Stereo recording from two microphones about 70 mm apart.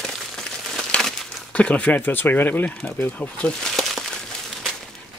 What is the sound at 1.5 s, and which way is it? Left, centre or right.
Speech, centre.